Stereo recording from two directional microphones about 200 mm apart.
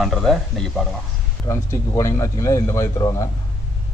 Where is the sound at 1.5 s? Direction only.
15° left (ahead or behind).